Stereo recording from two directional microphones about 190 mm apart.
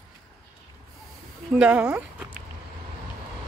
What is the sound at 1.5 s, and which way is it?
Speech, 5° right (ahead or behind).